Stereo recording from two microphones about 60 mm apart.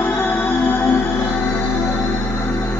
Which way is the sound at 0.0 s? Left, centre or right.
Left.